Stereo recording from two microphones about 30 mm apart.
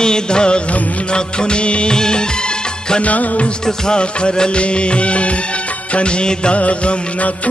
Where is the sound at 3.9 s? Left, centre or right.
Left.